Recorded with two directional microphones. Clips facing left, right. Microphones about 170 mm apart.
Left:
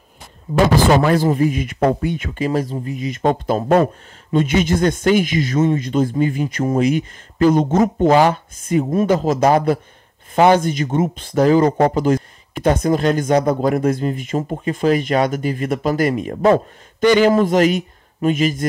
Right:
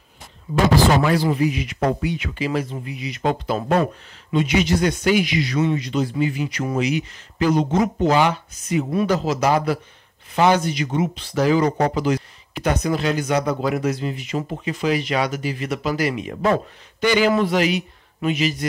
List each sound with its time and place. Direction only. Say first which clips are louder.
1.0 s speech: left 3 dB; 45° left (ahead or behind)